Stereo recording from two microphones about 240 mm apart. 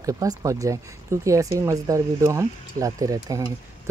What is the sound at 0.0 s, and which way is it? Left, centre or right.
Speech, centre.